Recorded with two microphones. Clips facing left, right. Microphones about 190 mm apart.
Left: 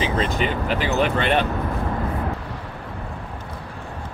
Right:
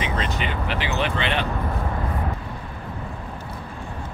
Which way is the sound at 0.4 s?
40° left (ahead or behind).